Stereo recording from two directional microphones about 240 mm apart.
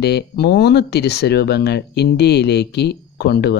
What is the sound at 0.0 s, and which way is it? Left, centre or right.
Speech, left.